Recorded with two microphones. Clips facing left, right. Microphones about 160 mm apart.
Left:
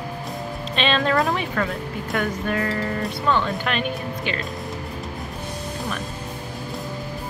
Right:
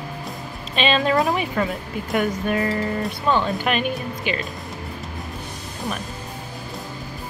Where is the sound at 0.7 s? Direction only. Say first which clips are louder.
Right 2 dB; 5° right (ahead or behind).